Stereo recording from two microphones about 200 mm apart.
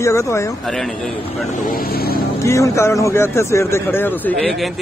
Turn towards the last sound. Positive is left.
turn(degrees=5)  # may be behind; listen again after turning